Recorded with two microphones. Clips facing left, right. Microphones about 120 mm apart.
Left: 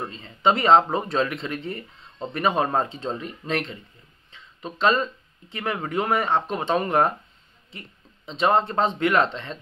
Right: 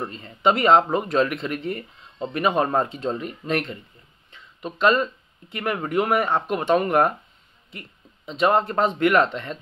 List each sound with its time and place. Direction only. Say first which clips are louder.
0.4 s speech: even; 30° left (ahead or behind)
3.5 s speech: right 2 dB; 45° right (ahead or behind)
4.6 s speech: right 2 dB; 30° left (ahead or behind)
8.3 s speech: right 1 dB; 30° left (ahead or behind)